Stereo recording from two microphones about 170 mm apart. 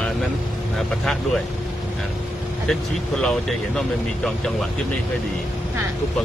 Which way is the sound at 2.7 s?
Centre (ahead or behind).